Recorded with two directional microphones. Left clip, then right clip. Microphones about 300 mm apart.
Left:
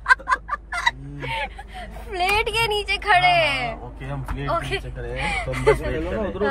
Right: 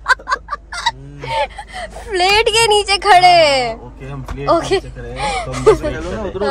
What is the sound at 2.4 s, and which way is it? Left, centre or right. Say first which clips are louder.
Speech: right 10 dB; right.